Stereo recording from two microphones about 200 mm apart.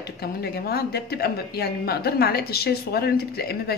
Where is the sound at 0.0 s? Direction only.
50° left (ahead or behind).